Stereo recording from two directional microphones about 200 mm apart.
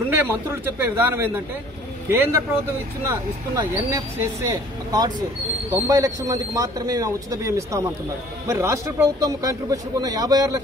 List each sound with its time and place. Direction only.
0.1 s speech: 10° right (ahead or behind)
3.5 s speech: 15° right (ahead or behind)